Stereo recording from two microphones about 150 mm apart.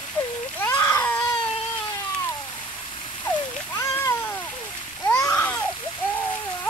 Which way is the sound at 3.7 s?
15° left (ahead or behind).